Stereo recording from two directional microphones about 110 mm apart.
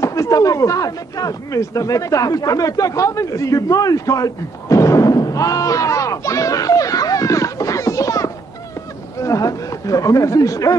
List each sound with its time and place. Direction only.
0.0 s speech: 30° left (ahead or behind)